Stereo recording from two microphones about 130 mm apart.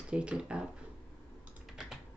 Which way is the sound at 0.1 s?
10° right (ahead or behind).